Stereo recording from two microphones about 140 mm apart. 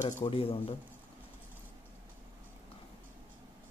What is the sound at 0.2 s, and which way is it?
Speech, 45° left (ahead or behind).